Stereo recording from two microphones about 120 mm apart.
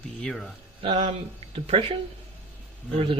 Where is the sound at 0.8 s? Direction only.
55° right (ahead or behind).